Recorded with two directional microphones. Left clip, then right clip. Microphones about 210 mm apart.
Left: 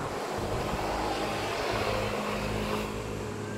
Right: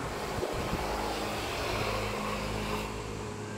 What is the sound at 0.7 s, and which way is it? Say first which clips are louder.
Vehicle: left 2 dB; 55° right (ahead or behind).